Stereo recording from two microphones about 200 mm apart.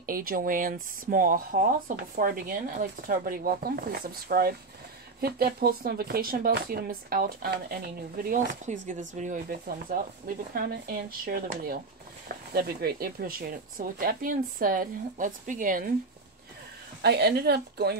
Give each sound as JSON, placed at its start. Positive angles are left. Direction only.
{"t": 0.0, "sound": "speech", "side_deg": -45}
{"t": 8.7, "sound": "speech", "side_deg": -35}
{"t": 17.0, "sound": "speech", "side_deg": -55}